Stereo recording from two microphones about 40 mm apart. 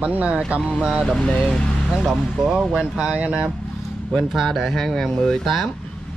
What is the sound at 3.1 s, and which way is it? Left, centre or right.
Speech, right.